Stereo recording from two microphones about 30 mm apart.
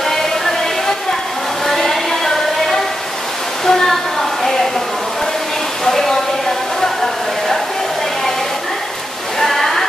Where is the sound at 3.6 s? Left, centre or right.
Centre.